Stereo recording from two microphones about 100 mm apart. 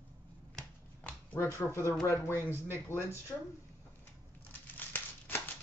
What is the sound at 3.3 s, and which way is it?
Speech, 20° left (ahead or behind).